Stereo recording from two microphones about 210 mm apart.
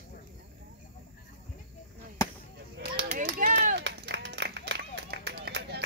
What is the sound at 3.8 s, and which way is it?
Run, 55° right (ahead or behind).